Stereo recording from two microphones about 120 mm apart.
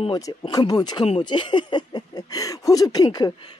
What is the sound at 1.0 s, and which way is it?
Speech, 45° left (ahead or behind).